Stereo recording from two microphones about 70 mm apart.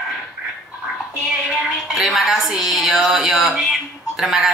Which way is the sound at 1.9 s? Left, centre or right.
Centre.